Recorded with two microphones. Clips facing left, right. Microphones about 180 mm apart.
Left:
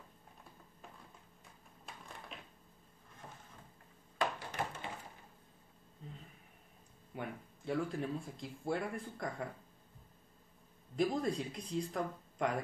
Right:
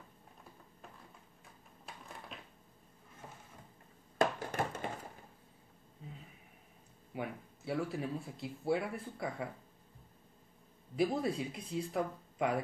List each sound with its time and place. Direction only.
4.2 s a sound: 45° right (ahead or behind)
7.2 s speech: 5° right (ahead or behind)
11.0 s speech: 5° right (ahead or behind)